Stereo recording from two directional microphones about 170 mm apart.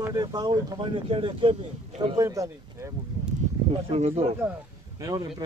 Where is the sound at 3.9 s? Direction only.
40° right (ahead or behind).